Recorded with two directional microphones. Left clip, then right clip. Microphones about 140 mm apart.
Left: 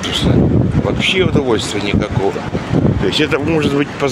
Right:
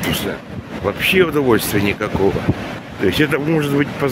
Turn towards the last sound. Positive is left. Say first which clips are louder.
# left 2 dB
turn(degrees=-15)  # may be behind; listen again after turning